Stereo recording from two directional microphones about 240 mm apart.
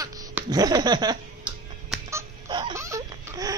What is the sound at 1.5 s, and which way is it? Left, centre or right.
Chicken, centre.